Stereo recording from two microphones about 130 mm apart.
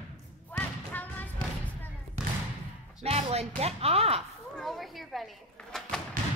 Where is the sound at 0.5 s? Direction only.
15° left (ahead or behind).